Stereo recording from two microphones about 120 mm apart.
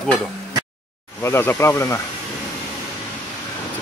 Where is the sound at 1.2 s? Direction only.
20° left (ahead or behind).